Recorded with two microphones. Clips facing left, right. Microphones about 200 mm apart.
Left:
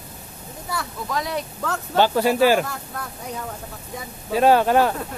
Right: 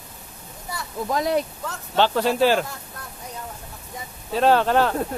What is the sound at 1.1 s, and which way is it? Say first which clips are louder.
Speech: right 5 dB; 45° right (ahead or behind).